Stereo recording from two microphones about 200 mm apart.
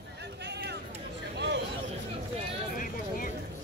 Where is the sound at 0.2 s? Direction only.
55° right (ahead or behind).